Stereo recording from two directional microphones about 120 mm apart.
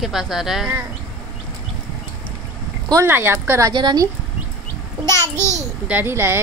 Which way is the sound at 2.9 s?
20° right (ahead or behind).